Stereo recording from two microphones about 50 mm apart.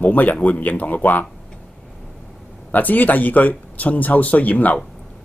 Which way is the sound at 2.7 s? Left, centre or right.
Left.